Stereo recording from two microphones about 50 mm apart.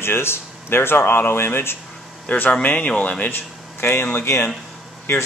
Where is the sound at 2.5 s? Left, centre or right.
Left.